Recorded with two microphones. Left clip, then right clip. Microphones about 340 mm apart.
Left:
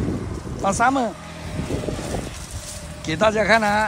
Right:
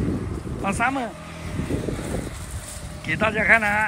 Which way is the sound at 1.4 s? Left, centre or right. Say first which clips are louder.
Even; left.